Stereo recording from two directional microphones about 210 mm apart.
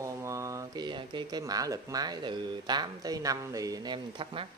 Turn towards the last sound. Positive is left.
turn(degrees=-25)  # may be behind; listen again after turning